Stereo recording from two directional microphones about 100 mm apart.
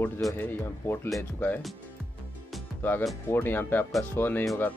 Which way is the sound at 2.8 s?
20° left (ahead or behind).